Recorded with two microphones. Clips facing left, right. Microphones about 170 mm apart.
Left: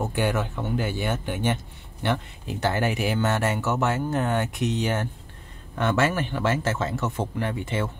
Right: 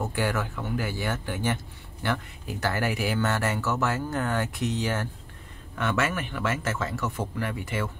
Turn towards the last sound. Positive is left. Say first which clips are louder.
# left 3 dB
turn(degrees=25)  # may be behind; listen again after turning